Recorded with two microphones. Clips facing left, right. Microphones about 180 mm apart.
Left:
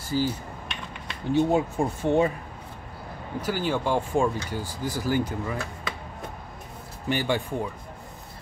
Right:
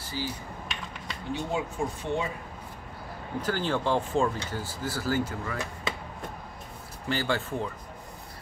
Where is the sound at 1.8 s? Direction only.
45° left (ahead or behind).